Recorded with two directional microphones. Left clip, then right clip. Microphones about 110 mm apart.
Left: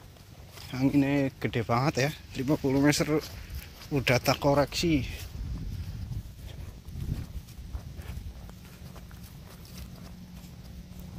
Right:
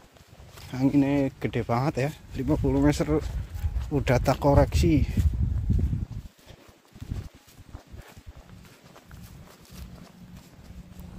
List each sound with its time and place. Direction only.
0.7 s speech: 40° right (ahead or behind)
0.9 s speech: 60° right (ahead or behind)
1.8 s speech: 25° right (ahead or behind)
2.5 s speech: 10° right (ahead or behind)
2.9 s speech: 30° right (ahead or behind)
3.9 s speech: 45° right (ahead or behind); by 5.1 s 60° right (ahead or behind)